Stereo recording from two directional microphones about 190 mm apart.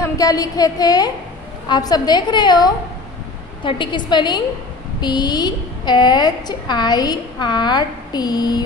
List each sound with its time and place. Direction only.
0.0 s a woman's voice: 20° left (ahead or behind)